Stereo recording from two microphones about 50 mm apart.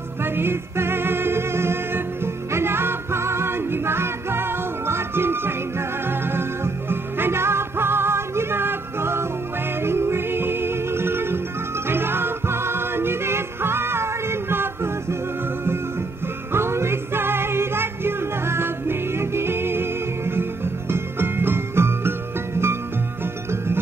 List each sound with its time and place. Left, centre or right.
0.2 s music: right
16.5 s music: right